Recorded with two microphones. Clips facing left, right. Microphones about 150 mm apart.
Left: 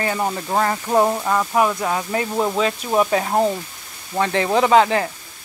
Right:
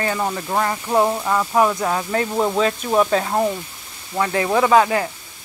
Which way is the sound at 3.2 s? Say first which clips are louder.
Left 1 dB; 30° left (ahead or behind).